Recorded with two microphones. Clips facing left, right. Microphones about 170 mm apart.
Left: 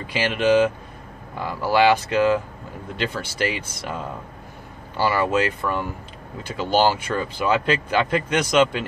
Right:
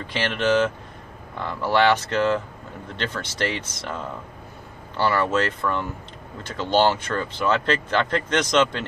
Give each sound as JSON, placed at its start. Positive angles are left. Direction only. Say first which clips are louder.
{"t": 0.0, "sound": "speech", "louder": "left 2 dB", "side_deg": 10}